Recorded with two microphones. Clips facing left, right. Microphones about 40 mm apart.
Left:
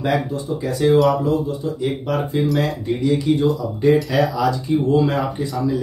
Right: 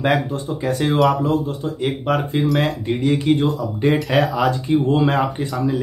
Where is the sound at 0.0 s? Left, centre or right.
Right.